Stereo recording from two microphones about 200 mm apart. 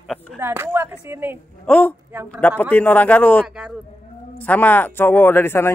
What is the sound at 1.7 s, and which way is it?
Speech, 10° left (ahead or behind).